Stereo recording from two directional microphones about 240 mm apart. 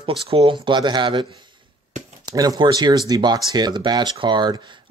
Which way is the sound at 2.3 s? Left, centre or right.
Centre.